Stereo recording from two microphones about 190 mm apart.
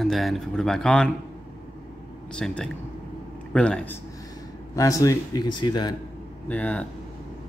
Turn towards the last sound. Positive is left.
turn(degrees=10)  # may be behind; listen again after turning